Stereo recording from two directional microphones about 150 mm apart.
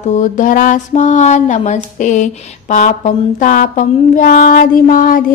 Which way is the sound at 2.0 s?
55° left (ahead or behind).